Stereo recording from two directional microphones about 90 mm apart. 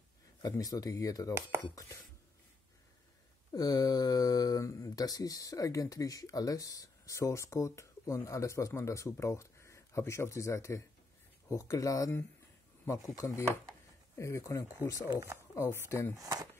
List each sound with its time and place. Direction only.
0.4 s speech: 40° left (ahead or behind)
3.5 s speech: 45° left (ahead or behind); by 16.2 s 25° left (ahead or behind)
16.2 s speech: 40° right (ahead or behind)